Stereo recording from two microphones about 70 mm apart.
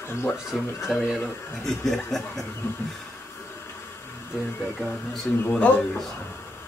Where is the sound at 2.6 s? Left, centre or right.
Left.